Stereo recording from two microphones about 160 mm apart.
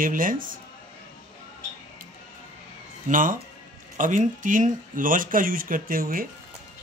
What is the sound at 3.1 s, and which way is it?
Speech, 55° right (ahead or behind).